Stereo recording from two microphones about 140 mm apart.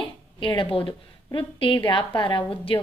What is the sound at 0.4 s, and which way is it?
A woman's voice, 35° left (ahead or behind).